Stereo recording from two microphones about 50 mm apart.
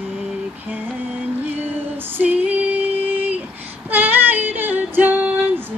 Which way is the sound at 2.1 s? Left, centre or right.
Right.